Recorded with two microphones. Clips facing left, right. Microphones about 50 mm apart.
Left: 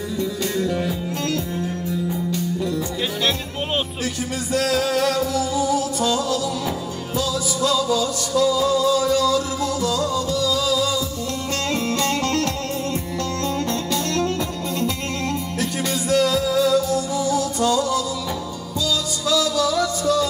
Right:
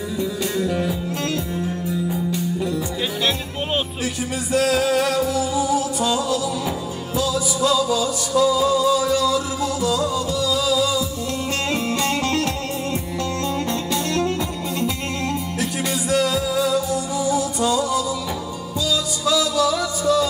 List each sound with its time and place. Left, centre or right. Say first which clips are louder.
0.2 s music: even; centre
4.0 s music: right 1 dB; right
13.7 s music: even; centre
15.6 s music: left 1 dB; centre
19.2 s music: right 1 dB; centre